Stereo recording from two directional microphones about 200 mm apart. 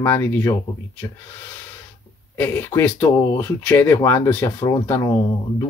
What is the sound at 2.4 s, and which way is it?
Speech, 10° left (ahead or behind).